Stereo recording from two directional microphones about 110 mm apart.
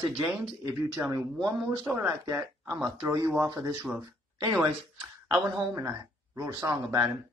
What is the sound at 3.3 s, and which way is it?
Speech, 35° right (ahead or behind).